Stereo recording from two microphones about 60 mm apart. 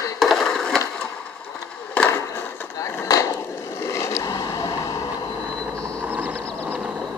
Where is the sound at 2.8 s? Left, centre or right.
Left.